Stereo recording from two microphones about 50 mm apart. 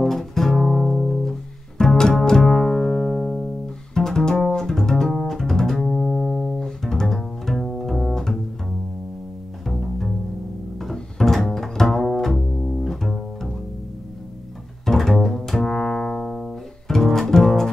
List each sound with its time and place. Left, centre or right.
0.0 s music: centre
1.8 s music: centre
9.7 s bowed string instrument: centre
10.8 s double bass: centre
14.9 s double bass: centre